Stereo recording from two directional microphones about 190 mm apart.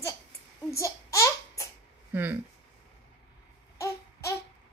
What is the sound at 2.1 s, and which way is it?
Speech, 10° right (ahead or behind).